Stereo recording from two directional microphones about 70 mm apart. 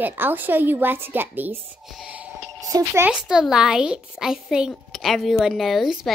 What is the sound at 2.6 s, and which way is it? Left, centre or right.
Music, right.